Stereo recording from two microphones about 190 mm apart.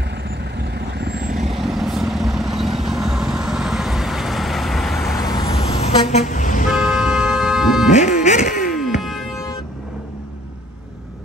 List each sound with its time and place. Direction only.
0.6 s vehicle: 60° right (ahead or behind)
1.5 s vehicle: centre (ahead or behind)
5.2 s vehicle: 20° left (ahead or behind)
5.5 s vehicle: 30° left (ahead or behind)
6.9 s music: 5° right (ahead or behind)
7.9 s music: 40° left (ahead or behind)
8.7 s music: centre (ahead or behind)